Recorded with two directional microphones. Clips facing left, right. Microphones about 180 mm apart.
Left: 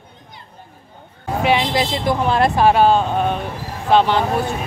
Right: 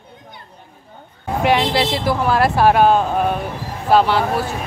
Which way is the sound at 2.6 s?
10° right (ahead or behind).